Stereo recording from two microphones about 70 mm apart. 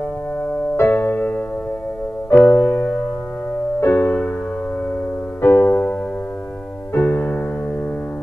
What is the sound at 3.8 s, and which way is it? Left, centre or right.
Music, left.